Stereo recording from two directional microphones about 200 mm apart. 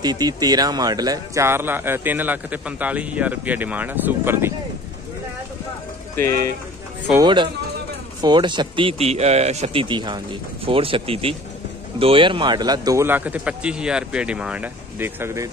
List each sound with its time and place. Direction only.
0.0 s speech: 20° right (ahead or behind)
6.1 s speech: 15° left (ahead or behind)
7.2 s speech: 25° right (ahead or behind)